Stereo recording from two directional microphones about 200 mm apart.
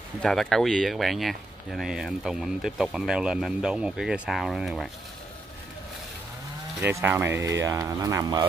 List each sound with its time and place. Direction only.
0.2 s speech: centre (ahead or behind)
6.8 s speech: 10° right (ahead or behind)